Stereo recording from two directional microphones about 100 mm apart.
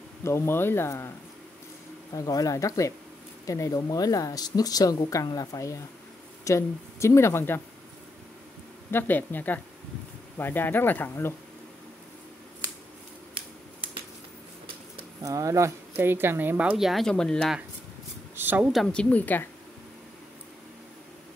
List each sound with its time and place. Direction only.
0.2 s speech: 25° left (ahead or behind)
2.1 s speech: 35° left (ahead or behind)
8.9 s speech: 20° left (ahead or behind)
15.2 s speech: 35° right (ahead or behind)
16.7 s speech: centre (ahead or behind)
18.3 s speech: 20° right (ahead or behind)
18.9 s speech: 10° left (ahead or behind)